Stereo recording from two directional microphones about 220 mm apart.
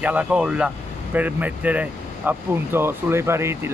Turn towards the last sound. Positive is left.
turn(degrees=-10)  # may be behind; listen again after turning